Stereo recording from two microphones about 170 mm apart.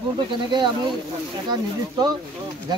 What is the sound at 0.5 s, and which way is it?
Speech, 25° right (ahead or behind).